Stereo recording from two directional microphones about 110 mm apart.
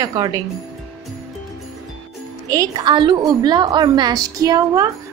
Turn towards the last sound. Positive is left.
turn(degrees=-35)  # may be behind; listen again after turning